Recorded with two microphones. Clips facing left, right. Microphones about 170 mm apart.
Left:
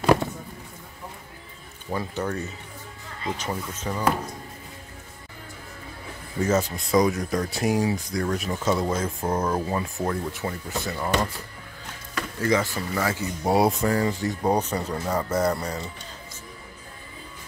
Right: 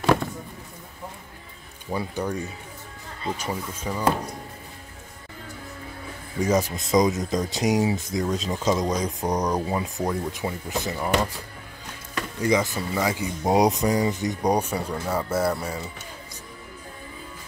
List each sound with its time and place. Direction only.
1.9 s speech: 10° right (ahead or behind)
6.7 s speech: 20° right (ahead or behind)
12.2 s speech: 15° right (ahead or behind)